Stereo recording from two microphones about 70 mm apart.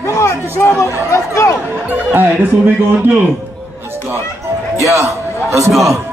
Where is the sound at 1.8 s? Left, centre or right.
Right.